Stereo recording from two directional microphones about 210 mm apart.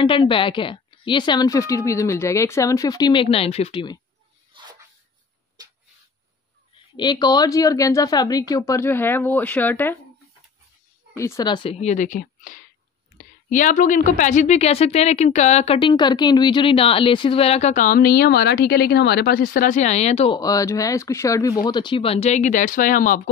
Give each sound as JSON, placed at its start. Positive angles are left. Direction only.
{"t": 0.0, "sound": "a woman's voice", "side_deg": 25}
{"t": 5.6, "sound": "a sound", "side_deg": -20}
{"t": 7.0, "sound": "speech", "side_deg": 20}
{"t": 11.1, "sound": "a woman's voice", "side_deg": 15}
{"t": 20.3, "sound": "a woman's voice", "side_deg": 15}